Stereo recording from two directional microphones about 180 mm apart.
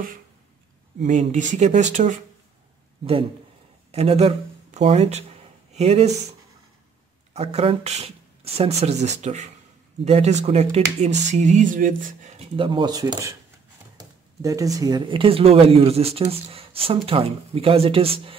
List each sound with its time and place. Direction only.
1.0 s speech: 40° right (ahead or behind)
3.9 s speech: 35° right (ahead or behind)
7.3 s speech: 35° right (ahead or behind)
12.5 s speech: 25° right (ahead or behind)